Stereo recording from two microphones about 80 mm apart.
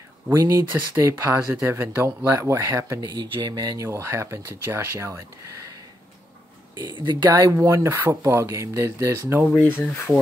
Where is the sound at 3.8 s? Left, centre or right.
Right.